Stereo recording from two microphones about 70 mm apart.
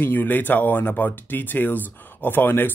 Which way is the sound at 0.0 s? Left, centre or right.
Left.